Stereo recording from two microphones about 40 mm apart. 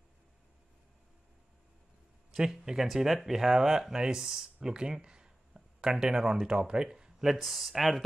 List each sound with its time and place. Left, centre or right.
2.3 s speech: centre
7.2 s speech: centre